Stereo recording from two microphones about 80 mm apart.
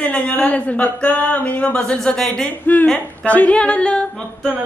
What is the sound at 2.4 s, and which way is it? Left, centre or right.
A woman's voice, centre.